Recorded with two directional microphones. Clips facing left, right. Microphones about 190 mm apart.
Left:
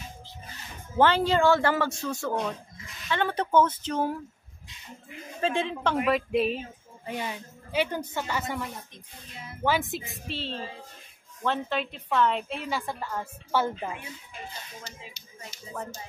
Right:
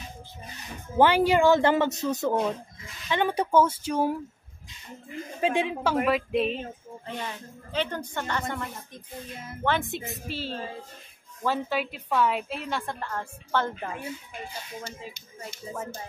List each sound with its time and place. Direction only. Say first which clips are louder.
0.9 s speech: right 2 dB; 15° right (ahead or behind)
5.4 s speech: right 2 dB; 15° right (ahead or behind)
6.0 s a woman's voice: even; centre (ahead or behind)
14.8 s speech: right 6 dB; 55° right (ahead or behind)